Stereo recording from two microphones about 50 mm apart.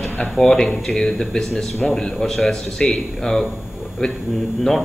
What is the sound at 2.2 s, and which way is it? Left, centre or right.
Speech, centre.